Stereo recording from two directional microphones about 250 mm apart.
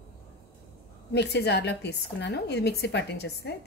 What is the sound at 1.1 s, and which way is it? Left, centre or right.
Sizzle, left.